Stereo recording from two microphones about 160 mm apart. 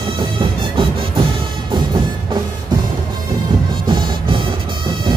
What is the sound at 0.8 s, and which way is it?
Music, 35° right (ahead or behind).